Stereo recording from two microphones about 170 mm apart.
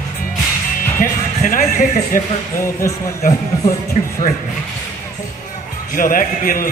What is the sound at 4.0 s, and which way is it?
Speech, 40° left (ahead or behind).